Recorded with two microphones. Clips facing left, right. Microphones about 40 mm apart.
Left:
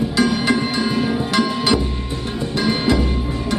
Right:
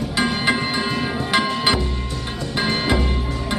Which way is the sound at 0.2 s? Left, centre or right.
Right.